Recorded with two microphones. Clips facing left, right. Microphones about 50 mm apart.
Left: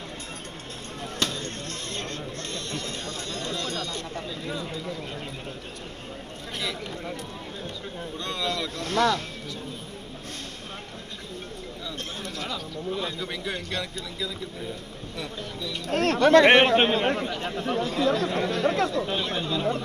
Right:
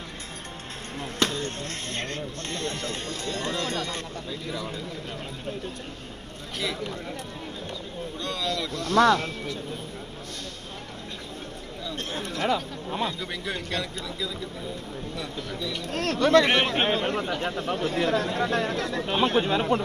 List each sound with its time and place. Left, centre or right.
1.2 s a sound: right
3.3 s speech: right
4.1 s speech: left
8.2 s speech: left
8.9 s speech: right
12.2 s chatter: right
13.5 s speech: right
15.9 s speech: left
17.2 s speech: right